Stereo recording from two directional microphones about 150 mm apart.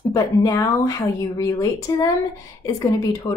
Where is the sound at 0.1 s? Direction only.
25° left (ahead or behind).